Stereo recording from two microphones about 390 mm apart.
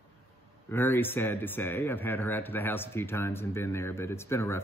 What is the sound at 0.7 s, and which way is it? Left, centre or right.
A man's voice, centre.